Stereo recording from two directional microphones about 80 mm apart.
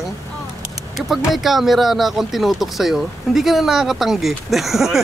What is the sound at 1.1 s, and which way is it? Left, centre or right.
Speech, centre.